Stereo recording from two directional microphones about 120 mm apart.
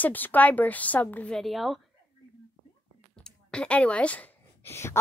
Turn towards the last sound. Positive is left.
turn(degrees=20)  # may be behind; listen again after turning